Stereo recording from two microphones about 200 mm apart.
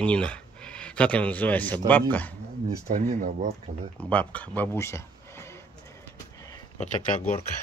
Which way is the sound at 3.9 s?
5° left (ahead or behind).